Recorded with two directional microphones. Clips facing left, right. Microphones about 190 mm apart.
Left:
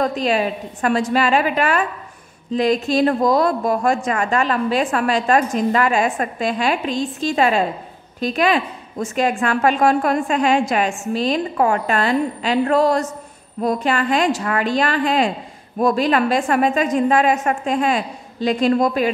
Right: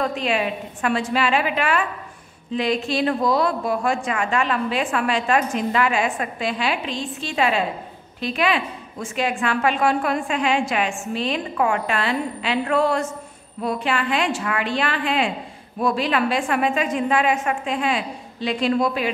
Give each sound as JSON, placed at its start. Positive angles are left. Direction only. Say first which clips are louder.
{"t": 0.0, "sound": "a woman's voice", "louder": "left 4 dB", "side_deg": 40}